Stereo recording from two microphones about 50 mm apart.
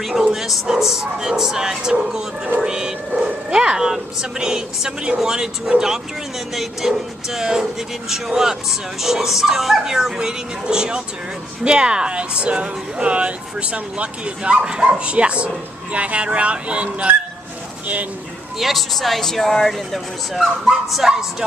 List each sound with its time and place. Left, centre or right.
0.2 s speech: centre; by 17.2 s right
18.6 s speech: centre